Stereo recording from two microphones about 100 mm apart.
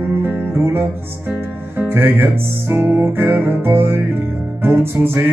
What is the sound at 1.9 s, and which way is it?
Music, 20° right (ahead or behind).